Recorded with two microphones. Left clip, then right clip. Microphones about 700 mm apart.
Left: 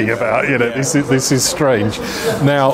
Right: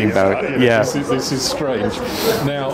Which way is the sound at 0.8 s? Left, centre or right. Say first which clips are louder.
Left 1 dB; left.